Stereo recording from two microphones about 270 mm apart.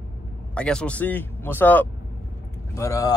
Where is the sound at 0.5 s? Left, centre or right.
Centre.